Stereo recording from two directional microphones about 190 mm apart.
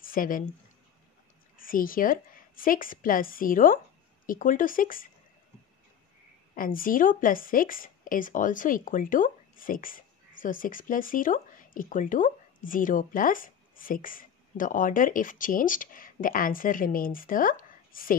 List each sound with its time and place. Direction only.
0.0 s a sound: 45° left (ahead or behind)
1.6 s a woman's voice: 45° left (ahead or behind)
6.5 s a woman's voice: 45° left (ahead or behind)